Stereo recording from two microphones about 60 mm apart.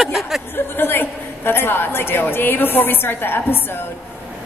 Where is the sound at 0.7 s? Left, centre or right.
Left.